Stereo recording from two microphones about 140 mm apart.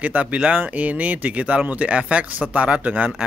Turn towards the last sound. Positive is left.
turn(degrees=-10)  # may be behind; listen again after turning